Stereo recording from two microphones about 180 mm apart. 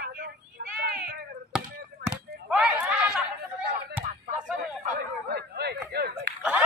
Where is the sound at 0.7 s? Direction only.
60° right (ahead or behind).